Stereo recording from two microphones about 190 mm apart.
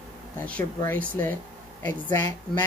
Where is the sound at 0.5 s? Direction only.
5° left (ahead or behind).